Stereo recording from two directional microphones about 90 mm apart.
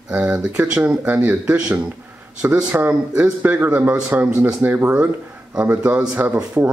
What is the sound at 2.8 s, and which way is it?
Speech, 15° right (ahead or behind).